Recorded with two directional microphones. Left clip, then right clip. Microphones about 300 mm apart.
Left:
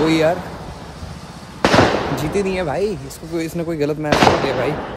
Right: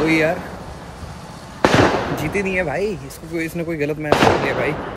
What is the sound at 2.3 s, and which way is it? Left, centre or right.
Speech, centre.